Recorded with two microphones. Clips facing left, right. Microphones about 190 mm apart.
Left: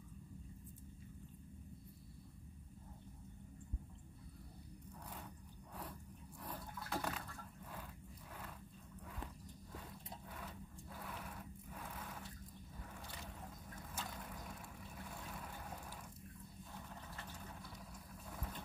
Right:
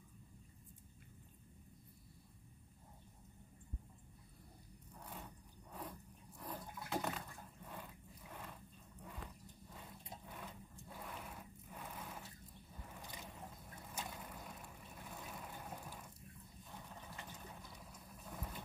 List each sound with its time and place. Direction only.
5.7 s vehicle: 5° right (ahead or behind)
6.4 s water: 10° right (ahead or behind)
7.6 s dog: 5° right (ahead or behind)
10.4 s sewing machine: centre (ahead or behind)
11.7 s a sound: 5° right (ahead or behind)
12.9 s boat: 15° right (ahead or behind)
13.7 s vehicle: 10° right (ahead or behind)
17.2 s a sound: 15° right (ahead or behind)
18.3 s vehicle: 5° right (ahead or behind)